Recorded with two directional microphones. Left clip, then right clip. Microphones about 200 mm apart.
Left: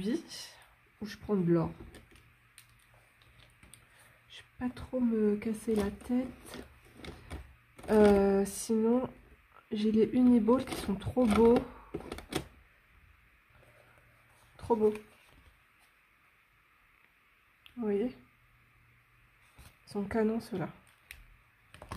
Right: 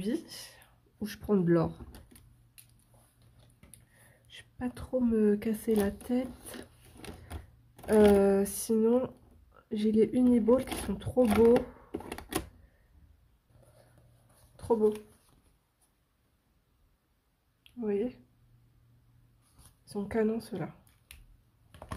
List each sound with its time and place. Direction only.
0.0 s speech: centre (ahead or behind)
0.9 s speech: 15° right (ahead or behind)
4.3 s speech: centre (ahead or behind)
8.0 s a sound: centre (ahead or behind)
9.7 s speech: 5° left (ahead or behind)
11.5 s speech: 5° right (ahead or behind)
14.6 s speech: 5° left (ahead or behind)
17.6 s speech: 10° left (ahead or behind)
19.9 s speech: 10° left (ahead or behind)